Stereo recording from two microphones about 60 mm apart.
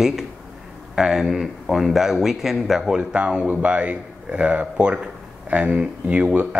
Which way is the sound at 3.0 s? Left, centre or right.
Centre.